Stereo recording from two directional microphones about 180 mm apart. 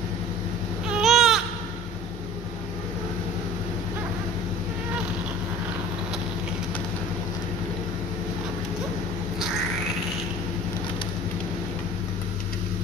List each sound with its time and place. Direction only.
0.8 s baby cry: 5° right (ahead or behind)